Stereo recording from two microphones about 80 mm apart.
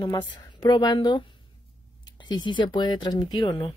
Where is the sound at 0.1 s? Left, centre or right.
Left.